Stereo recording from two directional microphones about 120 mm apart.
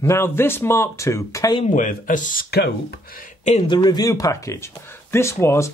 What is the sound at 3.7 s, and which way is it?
Speech, 35° left (ahead or behind).